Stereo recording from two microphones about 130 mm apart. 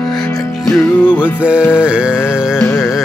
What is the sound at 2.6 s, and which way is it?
Music, 15° left (ahead or behind).